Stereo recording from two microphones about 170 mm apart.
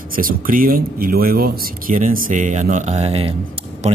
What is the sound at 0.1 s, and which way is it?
Speech, 55° right (ahead or behind).